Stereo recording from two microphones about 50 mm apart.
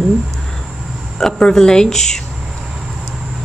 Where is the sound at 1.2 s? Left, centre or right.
Centre.